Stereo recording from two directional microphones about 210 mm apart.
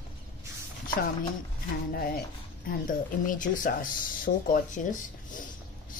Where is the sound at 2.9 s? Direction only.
40° left (ahead or behind).